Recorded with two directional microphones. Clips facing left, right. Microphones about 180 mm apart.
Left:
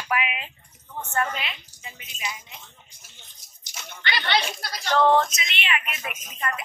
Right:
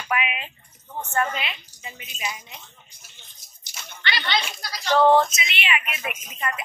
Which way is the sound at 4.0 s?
50° left (ahead or behind).